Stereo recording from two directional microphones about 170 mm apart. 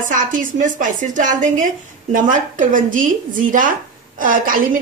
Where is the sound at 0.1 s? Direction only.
50° right (ahead or behind).